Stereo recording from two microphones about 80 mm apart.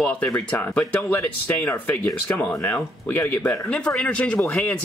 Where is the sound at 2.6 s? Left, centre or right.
Left.